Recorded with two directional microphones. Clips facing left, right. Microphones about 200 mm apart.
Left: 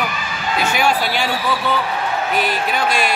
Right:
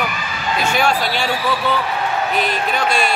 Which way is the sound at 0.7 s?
10° left (ahead or behind).